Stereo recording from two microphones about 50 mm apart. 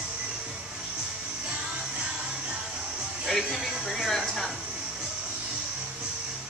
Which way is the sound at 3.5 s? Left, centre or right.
Centre.